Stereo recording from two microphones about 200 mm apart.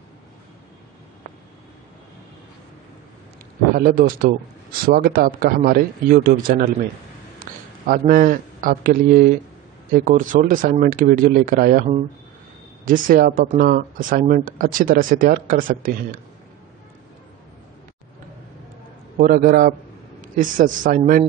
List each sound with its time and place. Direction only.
3.7 s a man's voice: 45° right (ahead or behind)
12.8 s speech: 45° right (ahead or behind)
19.1 s a man's voice: 45° right (ahead or behind)